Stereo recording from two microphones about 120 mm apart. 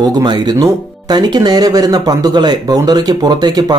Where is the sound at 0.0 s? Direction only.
30° right (ahead or behind).